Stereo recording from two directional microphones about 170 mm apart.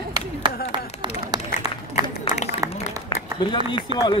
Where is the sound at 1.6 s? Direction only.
25° right (ahead or behind).